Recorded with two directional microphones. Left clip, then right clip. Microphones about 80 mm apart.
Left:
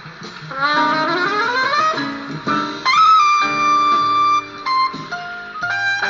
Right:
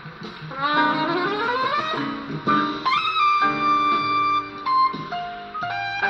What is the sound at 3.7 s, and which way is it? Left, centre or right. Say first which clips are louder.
Music: left 6 dB; right.